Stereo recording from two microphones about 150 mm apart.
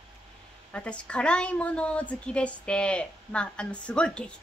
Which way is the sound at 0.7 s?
5° left (ahead or behind).